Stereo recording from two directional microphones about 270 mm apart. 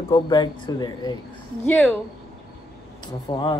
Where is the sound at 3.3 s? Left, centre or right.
Centre.